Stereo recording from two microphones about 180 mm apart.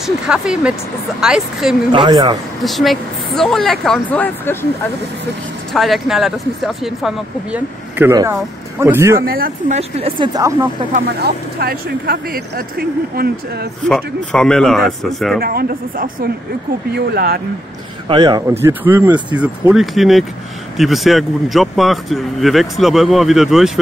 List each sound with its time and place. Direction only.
0.0 s speech: 5° right (ahead or behind)
1.9 s speech: 25° right (ahead or behind)
2.6 s speech: centre (ahead or behind)
5.7 s speech: centre (ahead or behind)
8.1 s speech: 15° right (ahead or behind)
9.2 s speech: 55° right (ahead or behind)
9.8 s speech: 35° right (ahead or behind)
11.1 s speech: 65° right (ahead or behind)
13.8 s speech: 5° left (ahead or behind)
15.4 s speech: 60° right (ahead or behind)
18.0 s speech: 25° right (ahead or behind)
18.6 s speech: 10° right (ahead or behind)